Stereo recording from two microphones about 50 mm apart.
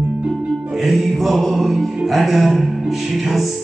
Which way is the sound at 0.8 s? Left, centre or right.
Centre.